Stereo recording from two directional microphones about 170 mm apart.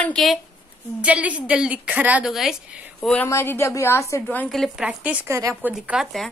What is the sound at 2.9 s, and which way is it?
A woman's voice, 10° left (ahead or behind).